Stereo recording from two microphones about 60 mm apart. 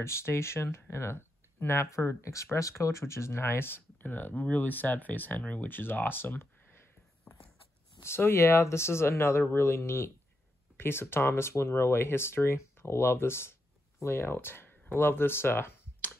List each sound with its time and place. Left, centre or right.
0.0 s speech: left
5.7 s speech: left
8.0 s speech: left